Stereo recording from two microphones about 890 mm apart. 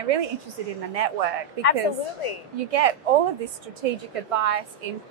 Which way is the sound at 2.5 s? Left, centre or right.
Right.